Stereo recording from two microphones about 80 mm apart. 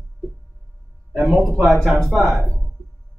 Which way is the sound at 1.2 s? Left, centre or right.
Centre.